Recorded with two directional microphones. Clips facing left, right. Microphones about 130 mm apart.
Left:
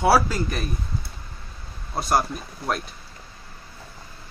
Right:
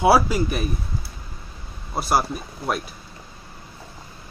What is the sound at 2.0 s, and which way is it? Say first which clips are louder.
Speech: right 1 dB; 5° right (ahead or behind).